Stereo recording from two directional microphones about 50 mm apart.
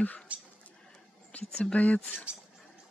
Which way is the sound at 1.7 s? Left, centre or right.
Left.